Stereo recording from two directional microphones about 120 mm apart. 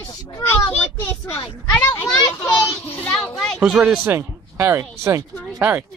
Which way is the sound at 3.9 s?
20° right (ahead or behind).